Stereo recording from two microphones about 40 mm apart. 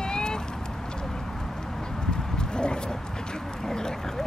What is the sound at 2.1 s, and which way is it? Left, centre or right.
Horse, centre.